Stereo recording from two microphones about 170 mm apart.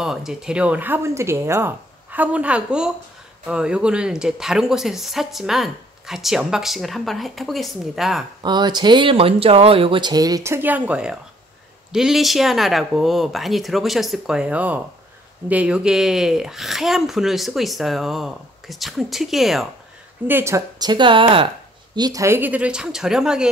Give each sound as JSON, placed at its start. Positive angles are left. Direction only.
{"t": 0.0, "sound": "speech", "side_deg": 0}
{"t": 8.4, "sound": "speech", "side_deg": -25}
{"t": 20.2, "sound": "speech", "side_deg": -15}